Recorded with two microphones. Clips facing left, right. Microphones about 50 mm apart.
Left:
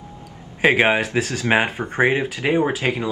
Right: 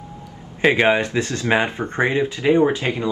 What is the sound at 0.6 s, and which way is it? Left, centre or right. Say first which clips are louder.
Speech: even; centre.